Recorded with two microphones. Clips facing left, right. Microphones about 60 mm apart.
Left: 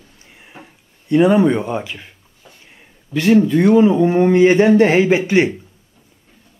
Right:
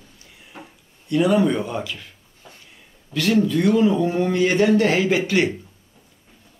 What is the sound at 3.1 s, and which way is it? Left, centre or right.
Speech, left.